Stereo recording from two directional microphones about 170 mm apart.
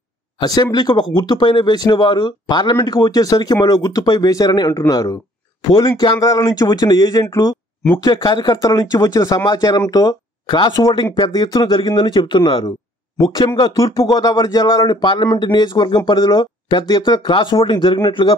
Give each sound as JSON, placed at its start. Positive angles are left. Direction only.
{"t": 0.4, "sound": "speech", "side_deg": 25}